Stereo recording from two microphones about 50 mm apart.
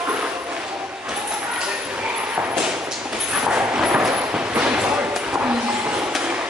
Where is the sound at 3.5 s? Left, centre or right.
Centre.